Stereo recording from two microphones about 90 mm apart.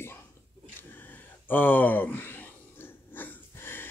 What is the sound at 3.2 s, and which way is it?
Wheeze, 25° left (ahead or behind).